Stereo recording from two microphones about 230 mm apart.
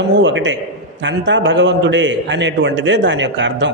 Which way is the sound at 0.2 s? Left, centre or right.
Right.